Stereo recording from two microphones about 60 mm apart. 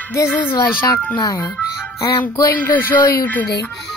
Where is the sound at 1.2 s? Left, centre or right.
Left.